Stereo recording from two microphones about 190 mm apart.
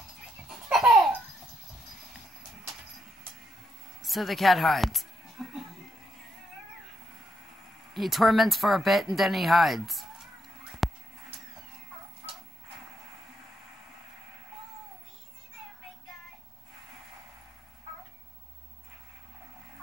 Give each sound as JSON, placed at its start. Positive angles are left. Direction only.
{"t": 0.7, "sound": "belly laugh", "side_deg": 0}
{"t": 4.0, "sound": "speech", "side_deg": 0}
{"t": 5.4, "sound": "television", "side_deg": 0}
{"t": 7.9, "sound": "speech", "side_deg": 0}
{"t": 10.7, "sound": "a sound", "side_deg": 0}